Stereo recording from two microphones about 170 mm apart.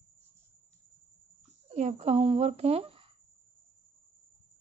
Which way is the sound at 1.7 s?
40° right (ahead or behind).